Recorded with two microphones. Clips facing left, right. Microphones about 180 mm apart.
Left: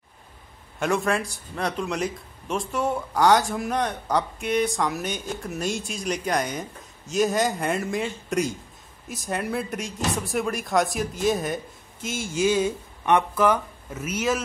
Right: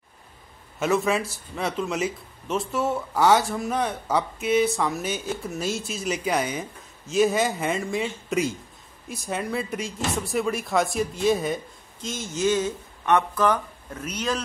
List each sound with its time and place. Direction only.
0.7 s a man's voice: centre (ahead or behind)